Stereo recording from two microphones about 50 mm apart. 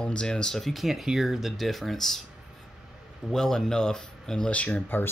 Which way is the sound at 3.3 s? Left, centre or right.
Centre.